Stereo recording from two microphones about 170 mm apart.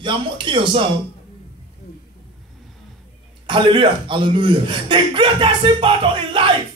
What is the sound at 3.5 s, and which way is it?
Speech, 30° right (ahead or behind).